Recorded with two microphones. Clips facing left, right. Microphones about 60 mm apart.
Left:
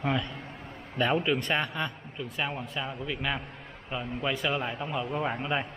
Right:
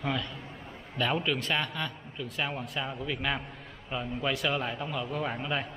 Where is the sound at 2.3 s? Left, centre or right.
Centre.